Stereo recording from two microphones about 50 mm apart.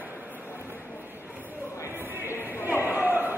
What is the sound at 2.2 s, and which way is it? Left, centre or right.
Chatter, right.